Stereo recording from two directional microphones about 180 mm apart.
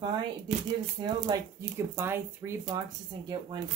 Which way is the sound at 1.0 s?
20° right (ahead or behind).